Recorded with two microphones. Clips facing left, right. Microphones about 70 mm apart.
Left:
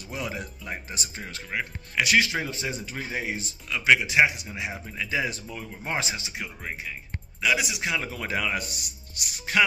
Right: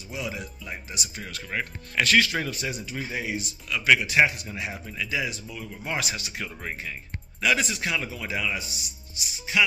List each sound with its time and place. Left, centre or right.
0.1 s speech: left
1.5 s speech: centre
2.1 s a man's voice: left
3.8 s a man's voice: left
5.7 s a man's voice: left
7.4 s speech: centre
8.1 s speech: left